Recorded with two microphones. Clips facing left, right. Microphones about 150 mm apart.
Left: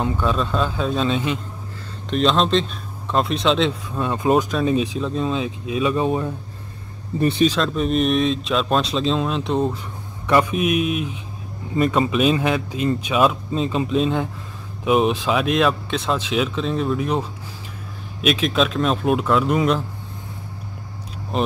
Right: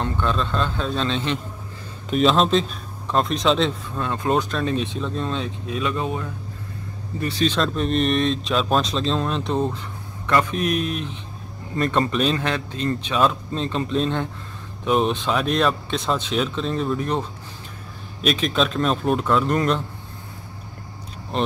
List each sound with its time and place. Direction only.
0.0 s speech: 5° left (ahead or behind)
2.0 s speech: 5° right (ahead or behind)
4.0 s speech: 15° left (ahead or behind)
6.0 s a man's voice: 30° left (ahead or behind)
7.4 s speech: centre (ahead or behind)
21.3 s speech: 5° left (ahead or behind)